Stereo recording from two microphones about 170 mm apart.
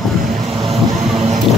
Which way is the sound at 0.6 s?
35° right (ahead or behind).